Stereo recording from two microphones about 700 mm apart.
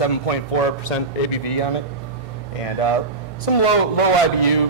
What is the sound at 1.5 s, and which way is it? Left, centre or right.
Speech, left.